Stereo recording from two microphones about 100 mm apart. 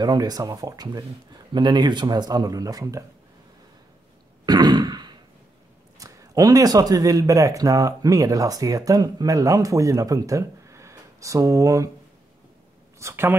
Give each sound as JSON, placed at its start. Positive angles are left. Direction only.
{"t": 0.0, "sound": "speech", "side_deg": -40}
{"t": 4.5, "sound": "throat clearing", "side_deg": -45}
{"t": 5.9, "sound": "speech", "side_deg": -35}
{"t": 13.0, "sound": "speech", "side_deg": -25}